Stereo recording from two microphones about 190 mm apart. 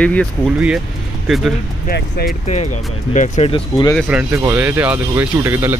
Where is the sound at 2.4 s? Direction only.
35° left (ahead or behind).